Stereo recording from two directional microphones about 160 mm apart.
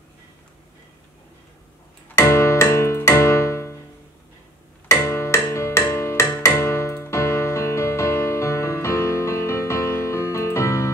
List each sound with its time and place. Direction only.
2.1 s music: 20° left (ahead or behind)
4.8 s music: 20° left (ahead or behind)